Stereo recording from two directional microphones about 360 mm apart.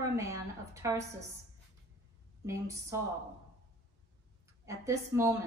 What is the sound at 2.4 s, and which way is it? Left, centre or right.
Speech, centre.